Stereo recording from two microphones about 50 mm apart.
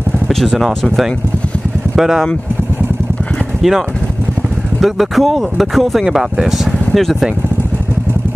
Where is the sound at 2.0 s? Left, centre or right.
Centre.